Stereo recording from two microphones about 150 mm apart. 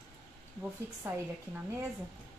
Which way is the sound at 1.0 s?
15° right (ahead or behind).